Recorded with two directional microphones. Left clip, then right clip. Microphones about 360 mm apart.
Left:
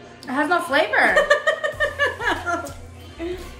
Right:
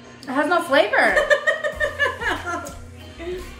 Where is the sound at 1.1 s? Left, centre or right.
Centre.